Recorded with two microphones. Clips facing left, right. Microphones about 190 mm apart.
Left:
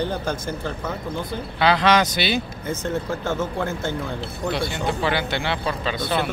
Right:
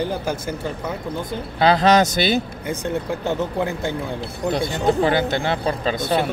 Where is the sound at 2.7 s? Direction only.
15° right (ahead or behind).